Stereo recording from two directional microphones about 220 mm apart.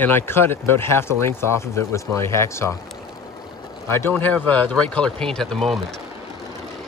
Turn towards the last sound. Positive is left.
turn(degrees=0)  # may be behind; listen again after turning